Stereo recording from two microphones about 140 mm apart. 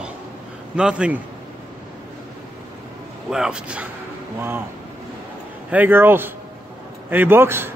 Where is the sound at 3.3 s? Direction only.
5° right (ahead or behind).